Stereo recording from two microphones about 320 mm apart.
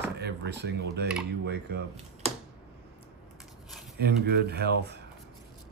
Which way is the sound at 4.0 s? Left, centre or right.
Right.